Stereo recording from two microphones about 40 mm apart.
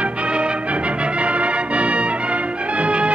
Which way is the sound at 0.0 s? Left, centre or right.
Right.